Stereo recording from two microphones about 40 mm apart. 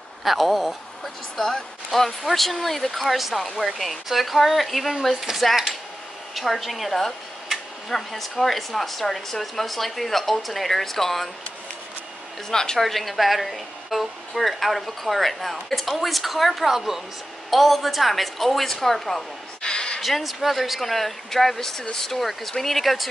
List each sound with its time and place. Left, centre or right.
0.2 s a woman's voice: centre
12.4 s a woman's voice: centre
12.8 s a woman's voice: centre
19.6 s a sound: left
20.0 s a woman's voice: centre